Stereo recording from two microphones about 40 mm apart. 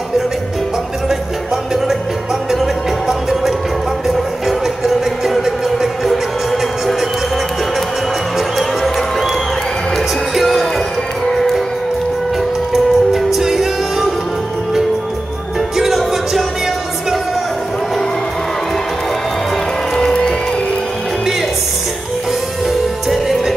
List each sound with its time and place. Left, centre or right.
2.6 s music: centre
10.3 s music: centre
12.7 s music: centre
15.8 s music: centre
20.0 s music: centre
23.0 s music: centre